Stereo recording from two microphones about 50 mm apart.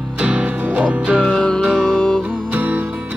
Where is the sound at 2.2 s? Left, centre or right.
Right.